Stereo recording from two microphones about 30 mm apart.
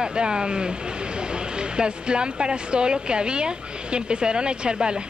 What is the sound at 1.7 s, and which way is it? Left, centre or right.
Speech, right.